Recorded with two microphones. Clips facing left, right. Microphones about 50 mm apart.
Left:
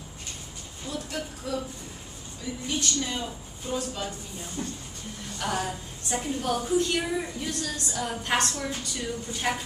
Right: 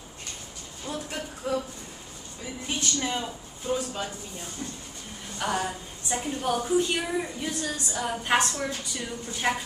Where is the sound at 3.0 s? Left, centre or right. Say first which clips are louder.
Right 1 dB; right.